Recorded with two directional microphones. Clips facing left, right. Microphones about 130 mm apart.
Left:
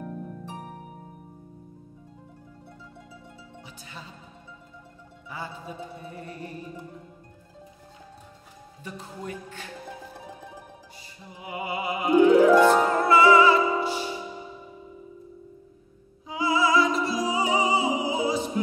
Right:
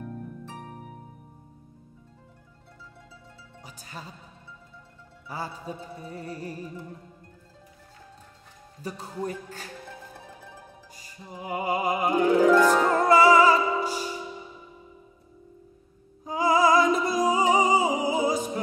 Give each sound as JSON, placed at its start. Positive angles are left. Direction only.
{"t": 3.6, "sound": "music", "side_deg": -40}
{"t": 5.3, "sound": "music", "side_deg": -40}
{"t": 8.8, "sound": "music", "side_deg": -35}
{"t": 11.0, "sound": "music", "side_deg": -40}
{"t": 12.4, "sound": "music", "side_deg": 15}
{"t": 13.0, "sound": "music", "side_deg": -40}
{"t": 16.3, "sound": "music", "side_deg": -45}